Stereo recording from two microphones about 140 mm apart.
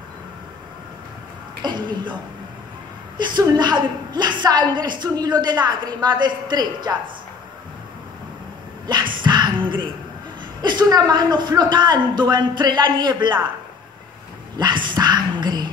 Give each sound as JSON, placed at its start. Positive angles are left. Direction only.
{"t": 1.6, "sound": "a woman's voice", "side_deg": -30}
{"t": 3.2, "sound": "a woman's voice", "side_deg": -30}
{"t": 8.8, "sound": "music", "side_deg": -30}
{"t": 10.6, "sound": "a woman's voice", "side_deg": -30}
{"t": 14.6, "sound": "a woman's voice", "side_deg": -35}